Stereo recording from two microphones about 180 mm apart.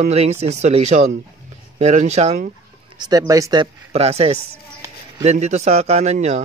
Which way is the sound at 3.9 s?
35° right (ahead or behind).